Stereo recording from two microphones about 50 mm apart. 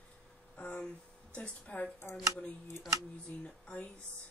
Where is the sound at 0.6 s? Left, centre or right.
Left.